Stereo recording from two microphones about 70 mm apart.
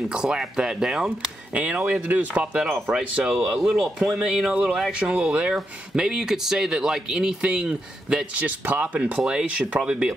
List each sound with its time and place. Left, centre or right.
0.1 s speech: centre
2.0 s speech: right
2.6 s speech: centre